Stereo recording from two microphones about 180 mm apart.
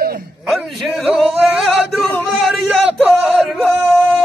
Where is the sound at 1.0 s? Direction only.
5° right (ahead or behind).